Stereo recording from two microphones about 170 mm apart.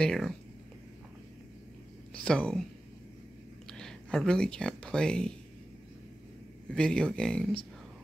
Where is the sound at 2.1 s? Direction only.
5° left (ahead or behind).